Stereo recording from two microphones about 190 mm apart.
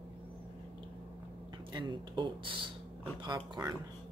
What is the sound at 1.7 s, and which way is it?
Speech, 25° right (ahead or behind).